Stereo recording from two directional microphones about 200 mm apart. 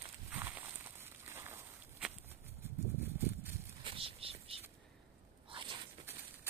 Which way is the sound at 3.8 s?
25° right (ahead or behind).